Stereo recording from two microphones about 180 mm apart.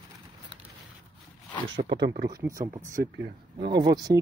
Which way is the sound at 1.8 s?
70° right (ahead or behind).